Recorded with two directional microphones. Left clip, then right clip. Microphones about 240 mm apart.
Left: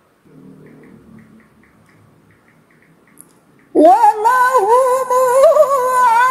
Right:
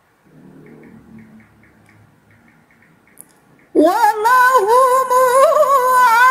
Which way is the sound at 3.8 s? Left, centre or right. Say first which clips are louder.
Left 5 dB; right.